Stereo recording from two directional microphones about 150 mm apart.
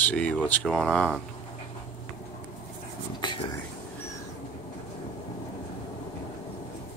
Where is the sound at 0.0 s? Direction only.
10° left (ahead or behind).